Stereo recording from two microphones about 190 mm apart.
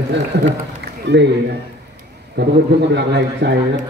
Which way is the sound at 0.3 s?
60° right (ahead or behind).